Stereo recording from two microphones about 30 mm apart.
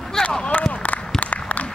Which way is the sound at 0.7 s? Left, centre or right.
Left.